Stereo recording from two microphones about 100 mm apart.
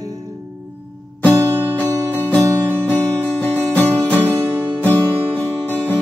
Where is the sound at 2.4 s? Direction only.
25° right (ahead or behind).